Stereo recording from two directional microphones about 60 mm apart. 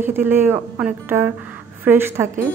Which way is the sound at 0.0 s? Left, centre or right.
Right.